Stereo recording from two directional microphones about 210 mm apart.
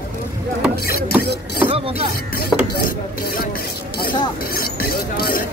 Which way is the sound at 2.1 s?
45° left (ahead or behind).